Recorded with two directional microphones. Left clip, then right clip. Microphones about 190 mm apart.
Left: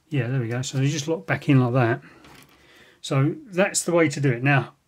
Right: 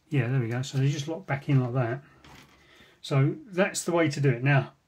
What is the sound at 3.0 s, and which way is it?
Speech, 30° left (ahead or behind).